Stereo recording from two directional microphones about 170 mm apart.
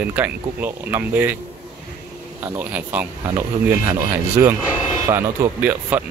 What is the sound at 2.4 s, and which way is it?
Speech, 10° right (ahead or behind).